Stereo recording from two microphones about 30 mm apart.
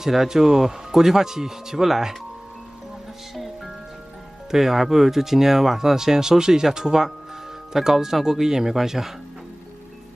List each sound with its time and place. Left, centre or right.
0.0 s speech: centre
3.3 s music: centre
4.5 s speech: centre